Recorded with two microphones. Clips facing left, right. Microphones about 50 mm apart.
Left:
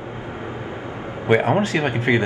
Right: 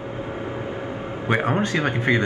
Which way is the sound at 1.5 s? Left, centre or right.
Left.